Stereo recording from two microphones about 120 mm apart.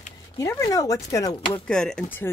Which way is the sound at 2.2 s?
15° left (ahead or behind).